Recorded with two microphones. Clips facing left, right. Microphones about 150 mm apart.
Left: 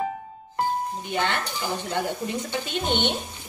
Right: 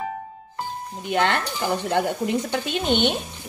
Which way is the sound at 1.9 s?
75° right (ahead or behind).